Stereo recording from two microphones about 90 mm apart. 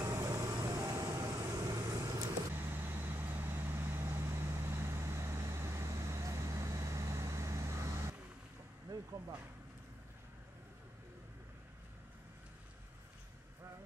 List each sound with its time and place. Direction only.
0.0 s vehicle: 30° right (ahead or behind)
2.5 s vehicle: 25° right (ahead or behind)